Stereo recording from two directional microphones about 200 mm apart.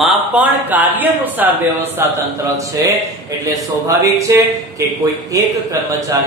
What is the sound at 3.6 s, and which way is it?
Speech, 15° right (ahead or behind).